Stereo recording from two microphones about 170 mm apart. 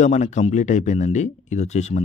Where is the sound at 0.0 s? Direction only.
45° left (ahead or behind).